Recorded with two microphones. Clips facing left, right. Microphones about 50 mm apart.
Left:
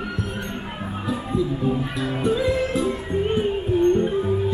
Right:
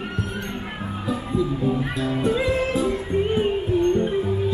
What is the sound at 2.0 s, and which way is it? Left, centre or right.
Music, left.